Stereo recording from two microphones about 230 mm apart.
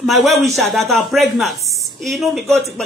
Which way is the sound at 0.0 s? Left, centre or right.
Centre.